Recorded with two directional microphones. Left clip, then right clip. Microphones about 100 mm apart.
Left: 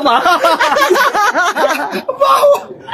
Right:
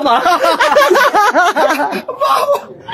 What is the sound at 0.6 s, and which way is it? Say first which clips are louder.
Snicker: right 2 dB; 20° right (ahead or behind).